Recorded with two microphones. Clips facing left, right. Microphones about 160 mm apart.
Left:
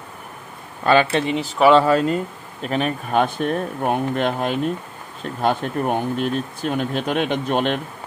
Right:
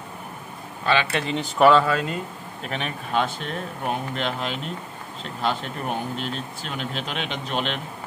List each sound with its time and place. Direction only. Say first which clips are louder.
0.8 s speech: left 6 dB; 45° left (ahead or behind)
1.3 s speech: right 1 dB; 5° left (ahead or behind)
1.7 s speech: left 7 dB; 35° left (ahead or behind)
2.7 s speech: left 6 dB; 45° left (ahead or behind)